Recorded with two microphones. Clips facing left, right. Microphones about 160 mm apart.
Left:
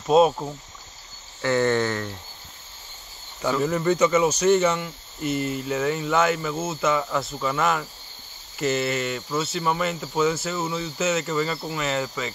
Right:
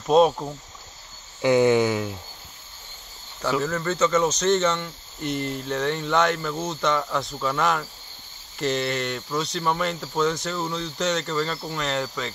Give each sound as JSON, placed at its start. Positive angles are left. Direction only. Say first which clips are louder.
{"t": 0.0, "sound": "speech", "louder": "even", "side_deg": 0}
{"t": 1.4, "sound": "cricket", "louder": "right 4 dB", "side_deg": -15}
{"t": 3.6, "sound": "speech", "louder": "left 6 dB", "side_deg": 15}